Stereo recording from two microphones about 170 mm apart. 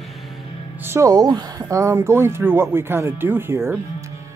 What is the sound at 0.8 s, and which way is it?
Speech, 20° right (ahead or behind).